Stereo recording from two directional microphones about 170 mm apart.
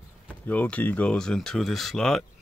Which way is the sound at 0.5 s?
10° left (ahead or behind).